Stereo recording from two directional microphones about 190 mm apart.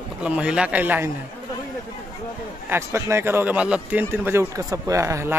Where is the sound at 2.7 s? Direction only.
15° right (ahead or behind).